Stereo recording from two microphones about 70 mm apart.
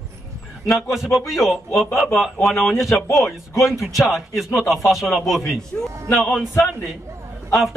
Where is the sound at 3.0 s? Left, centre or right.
Left.